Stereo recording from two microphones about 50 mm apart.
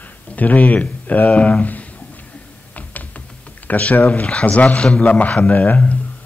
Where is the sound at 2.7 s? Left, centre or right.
Left.